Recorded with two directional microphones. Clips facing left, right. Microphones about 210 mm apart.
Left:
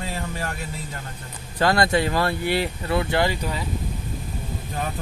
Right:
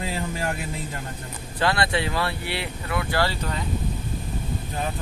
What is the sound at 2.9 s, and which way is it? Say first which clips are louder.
Speech: left 3 dB; 25° left (ahead or behind).